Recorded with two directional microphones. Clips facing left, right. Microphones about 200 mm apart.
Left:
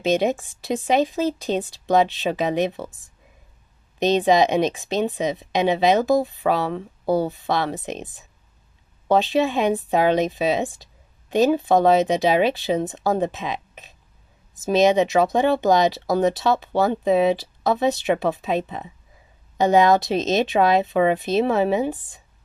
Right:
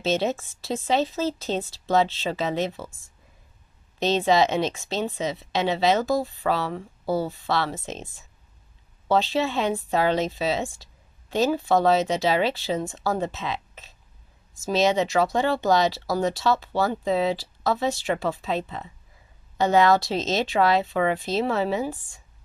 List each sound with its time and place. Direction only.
0.0 s speech: 15° left (ahead or behind)